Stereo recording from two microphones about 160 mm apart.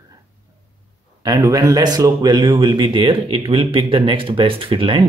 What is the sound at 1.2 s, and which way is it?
Speech, 20° right (ahead or behind).